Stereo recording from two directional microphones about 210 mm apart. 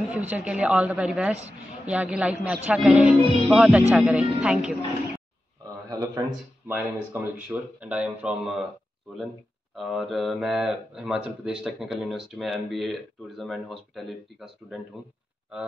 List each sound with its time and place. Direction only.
0.1 s speech: 5° right (ahead or behind)
5.9 s speech: 15° right (ahead or behind)
9.8 s speech: centre (ahead or behind)